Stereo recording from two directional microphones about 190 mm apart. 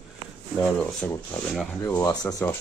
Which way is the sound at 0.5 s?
5° left (ahead or behind).